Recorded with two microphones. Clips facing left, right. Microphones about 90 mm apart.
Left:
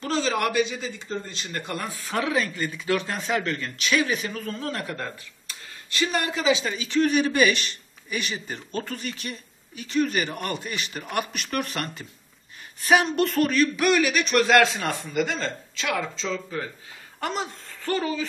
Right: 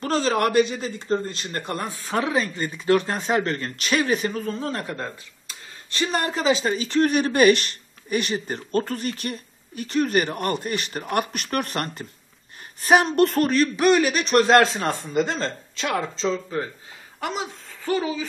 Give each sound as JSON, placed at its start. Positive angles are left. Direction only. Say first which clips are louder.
{"t": 0.0, "sound": "speech", "louder": "right 3 dB", "side_deg": -45}
{"t": 1.7, "sound": "speech", "louder": "right 3 dB", "side_deg": -30}
{"t": 5.9, "sound": "speech", "louder": "right 1 dB", "side_deg": -35}
{"t": 17.2, "sound": "speech", "louder": "even", "side_deg": -5}